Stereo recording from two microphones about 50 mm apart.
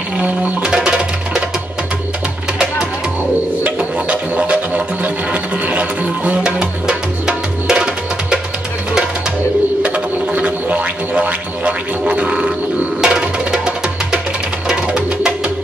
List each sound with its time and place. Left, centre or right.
0.8 s music: centre
3.6 s didgeridoo: right
9.8 s didgeridoo: right
12.1 s music: right